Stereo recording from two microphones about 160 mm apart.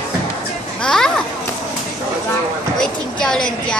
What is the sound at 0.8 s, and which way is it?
Speech, 5° left (ahead or behind).